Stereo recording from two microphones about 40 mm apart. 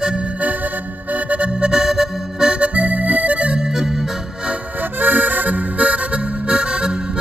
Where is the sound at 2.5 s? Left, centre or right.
Right.